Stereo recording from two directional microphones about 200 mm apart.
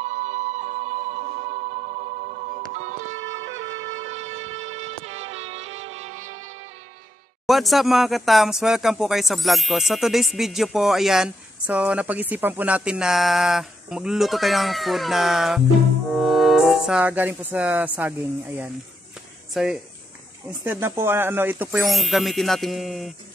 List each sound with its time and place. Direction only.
0.0 s music: 35° right (ahead or behind)
3.1 s music: 70° right (ahead or behind)
4.2 s a sound: 35° right (ahead or behind)
4.8 s music: 30° right (ahead or behind)
7.4 s speech: centre (ahead or behind)
16.1 s music: centre (ahead or behind)
19.5 s speech: centre (ahead or behind)